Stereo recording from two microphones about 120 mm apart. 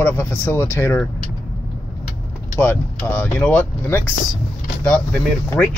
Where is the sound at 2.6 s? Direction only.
20° left (ahead or behind).